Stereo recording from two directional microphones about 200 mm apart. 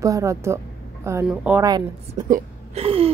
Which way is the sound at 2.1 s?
30° right (ahead or behind).